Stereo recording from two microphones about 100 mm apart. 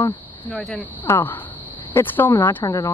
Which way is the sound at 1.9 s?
20° left (ahead or behind).